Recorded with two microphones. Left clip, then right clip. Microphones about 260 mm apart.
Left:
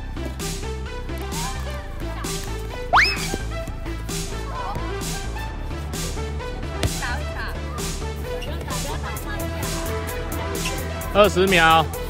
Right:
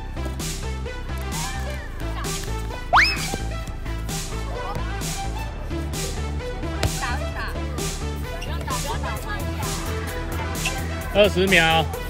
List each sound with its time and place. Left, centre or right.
2.9 s music: centre
11.1 s speech: centre